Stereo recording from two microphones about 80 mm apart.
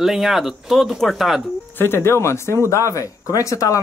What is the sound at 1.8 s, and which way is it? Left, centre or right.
Speech, left.